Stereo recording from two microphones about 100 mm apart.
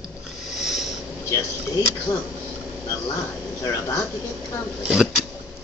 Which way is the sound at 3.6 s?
35° left (ahead or behind).